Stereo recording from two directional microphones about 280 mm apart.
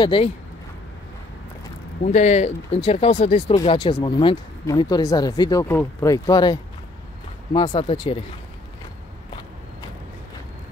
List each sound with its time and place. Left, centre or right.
0.0 s speech: centre
2.0 s speech: left